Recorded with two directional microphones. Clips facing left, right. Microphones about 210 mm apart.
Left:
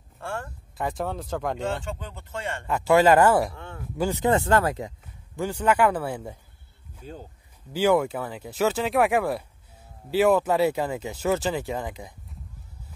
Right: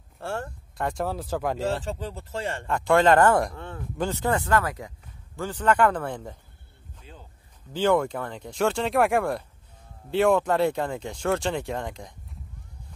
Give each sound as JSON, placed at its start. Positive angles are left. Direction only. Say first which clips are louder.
{"t": 0.2, "sound": "speech", "louder": "right 2 dB", "side_deg": -30}
{"t": 0.7, "sound": "speech", "louder": "right 1 dB", "side_deg": 0}
{"t": 1.9, "sound": "speech", "louder": "right 3 dB", "side_deg": -35}
{"t": 2.6, "sound": "speech", "louder": "left 2 dB", "side_deg": 5}
{"t": 7.0, "sound": "speech", "louder": "left 9 dB", "side_deg": 45}
{"t": 7.7, "sound": "speech", "louder": "left 1 dB", "side_deg": 10}